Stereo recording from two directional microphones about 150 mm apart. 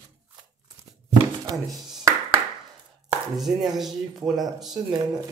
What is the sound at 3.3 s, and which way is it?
Speech, centre (ahead or behind).